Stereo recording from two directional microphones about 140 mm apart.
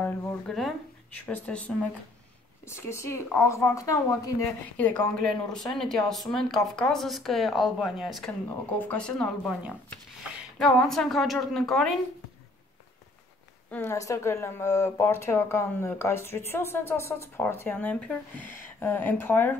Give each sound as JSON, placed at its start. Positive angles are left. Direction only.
{"t": 0.0, "sound": "speech", "side_deg": 5}
{"t": 4.7, "sound": "speech", "side_deg": 10}
{"t": 8.7, "sound": "speech", "side_deg": 10}
{"t": 10.6, "sound": "speech", "side_deg": 5}
{"t": 13.7, "sound": "speech", "side_deg": 20}